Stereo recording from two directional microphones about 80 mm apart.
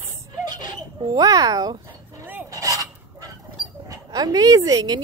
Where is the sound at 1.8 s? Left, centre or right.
Right.